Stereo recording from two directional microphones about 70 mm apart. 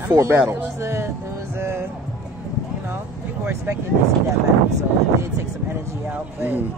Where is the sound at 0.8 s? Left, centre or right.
Right.